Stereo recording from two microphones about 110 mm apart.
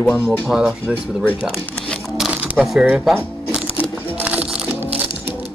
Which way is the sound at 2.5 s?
Centre (ahead or behind).